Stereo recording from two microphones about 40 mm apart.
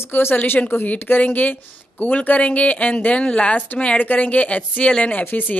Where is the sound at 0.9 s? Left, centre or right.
Left.